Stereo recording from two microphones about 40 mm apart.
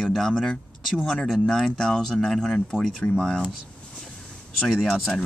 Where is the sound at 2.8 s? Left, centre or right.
Left.